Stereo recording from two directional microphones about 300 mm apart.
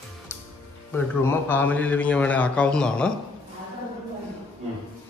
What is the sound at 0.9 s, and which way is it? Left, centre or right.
A man's voice, centre.